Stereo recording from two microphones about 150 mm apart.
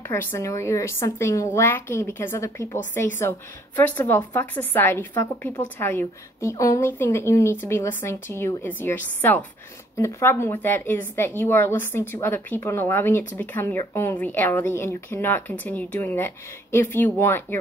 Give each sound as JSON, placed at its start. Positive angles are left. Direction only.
{"t": 0.1, "sound": "a woman's voice", "side_deg": 15}